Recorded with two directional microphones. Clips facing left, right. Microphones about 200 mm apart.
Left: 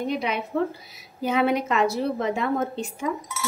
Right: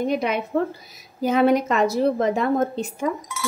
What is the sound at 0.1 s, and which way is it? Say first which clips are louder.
A woman's voice: right 4 dB; 45° right (ahead or behind).